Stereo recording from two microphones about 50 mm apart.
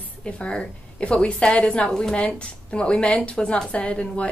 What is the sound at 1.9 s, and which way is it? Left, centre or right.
A woman's voice, centre.